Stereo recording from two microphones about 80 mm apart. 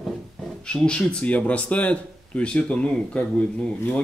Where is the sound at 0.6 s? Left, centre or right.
Centre.